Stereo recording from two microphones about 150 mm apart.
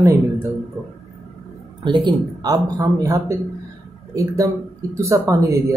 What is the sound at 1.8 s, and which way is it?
Speech, 30° right (ahead or behind).